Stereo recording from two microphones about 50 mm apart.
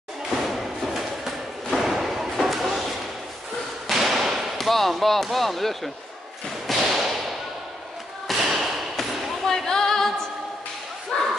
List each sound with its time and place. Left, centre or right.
0.3 s a sound: centre
3.9 s thump: centre
4.6 s speech: centre
6.7 s whip: centre
8.3 s thump: centre
9.5 s a capella: centre
11.1 s bow-wow: centre